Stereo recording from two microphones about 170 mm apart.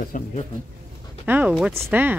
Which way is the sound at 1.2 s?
10° right (ahead or behind).